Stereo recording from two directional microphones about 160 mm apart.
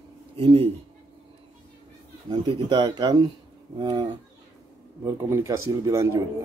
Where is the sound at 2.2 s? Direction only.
25° right (ahead or behind).